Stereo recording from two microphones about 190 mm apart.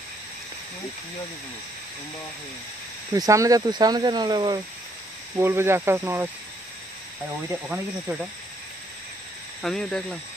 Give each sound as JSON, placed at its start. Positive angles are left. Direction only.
{"t": 3.2, "sound": "speech", "side_deg": -15}
{"t": 7.4, "sound": "speech", "side_deg": -10}
{"t": 9.6, "sound": "speech", "side_deg": 5}